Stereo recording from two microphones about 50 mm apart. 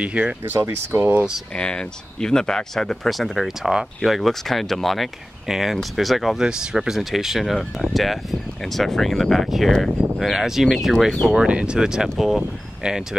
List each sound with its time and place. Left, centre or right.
0.0 s speech: right
0.6 s speech: right
1.6 s speech: centre
6.4 s speech: centre
11.2 s speech: right; by 12.4 s centre